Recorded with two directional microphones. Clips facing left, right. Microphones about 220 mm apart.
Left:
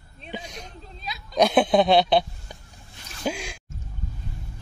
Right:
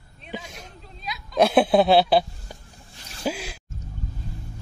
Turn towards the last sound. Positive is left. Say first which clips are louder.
# right 1 dB
turn(degrees=-5)  # may be behind; listen again after turning